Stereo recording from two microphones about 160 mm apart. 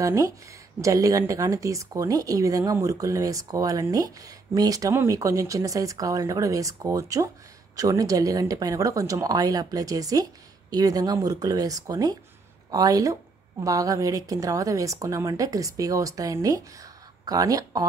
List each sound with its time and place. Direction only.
0.0 s speech: 20° right (ahead or behind)